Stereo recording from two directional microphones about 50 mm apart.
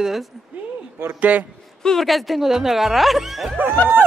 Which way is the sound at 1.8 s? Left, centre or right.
Centre.